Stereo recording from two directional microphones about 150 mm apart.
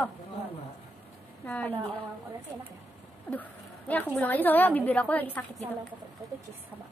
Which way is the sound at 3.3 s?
10° left (ahead or behind).